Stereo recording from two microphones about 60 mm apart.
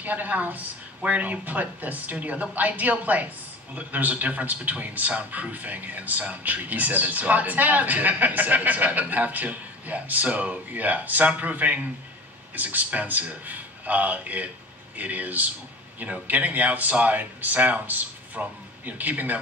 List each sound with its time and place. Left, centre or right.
0.0 s a man's voice: right